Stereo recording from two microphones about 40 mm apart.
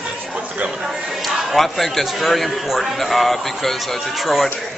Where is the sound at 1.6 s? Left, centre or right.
Centre.